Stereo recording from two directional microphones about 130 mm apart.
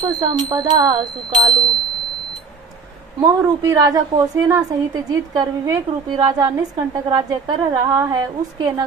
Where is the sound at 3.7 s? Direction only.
30° right (ahead or behind).